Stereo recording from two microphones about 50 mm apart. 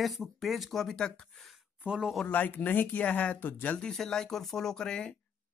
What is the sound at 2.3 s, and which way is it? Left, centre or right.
Speech, left.